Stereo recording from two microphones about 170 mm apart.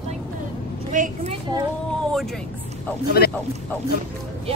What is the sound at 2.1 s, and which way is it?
Speech, centre (ahead or behind).